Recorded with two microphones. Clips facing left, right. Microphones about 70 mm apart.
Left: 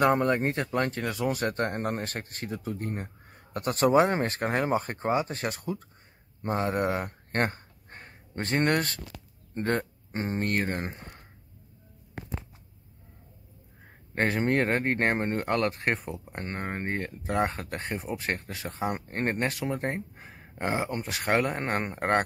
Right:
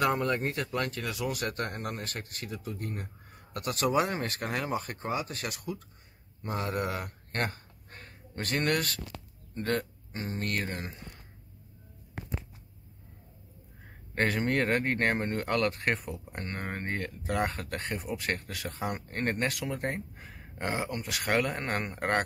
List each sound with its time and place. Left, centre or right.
0.0 s speech: left
14.1 s speech: left